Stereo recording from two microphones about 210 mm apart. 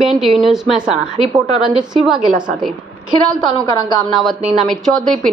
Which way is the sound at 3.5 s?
15° left (ahead or behind).